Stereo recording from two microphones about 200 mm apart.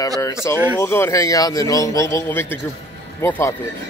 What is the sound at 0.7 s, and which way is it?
A man's voice, 10° left (ahead or behind).